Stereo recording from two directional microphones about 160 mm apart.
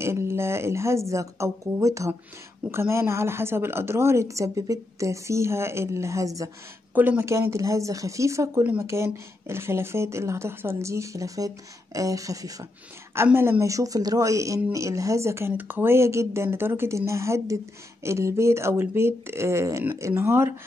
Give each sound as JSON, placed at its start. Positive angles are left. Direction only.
{"t": 0.0, "sound": "speech", "side_deg": -15}